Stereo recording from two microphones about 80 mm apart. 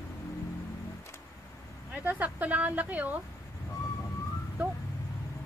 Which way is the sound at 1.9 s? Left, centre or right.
Right.